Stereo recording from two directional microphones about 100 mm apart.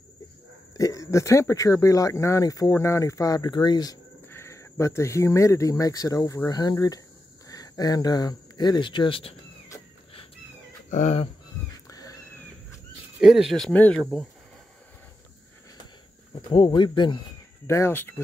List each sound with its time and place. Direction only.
0.7 s speech: 35° left (ahead or behind)
4.3 s speech: 30° left (ahead or behind); by 9.3 s 60° left (ahead or behind)
11.9 s a sound: 35° left (ahead or behind)
13.2 s speech: 5° right (ahead or behind)
13.7 s speech: 15° left (ahead or behind)
16.5 s speech: 50° left (ahead or behind)
17.6 s speech: 25° left (ahead or behind)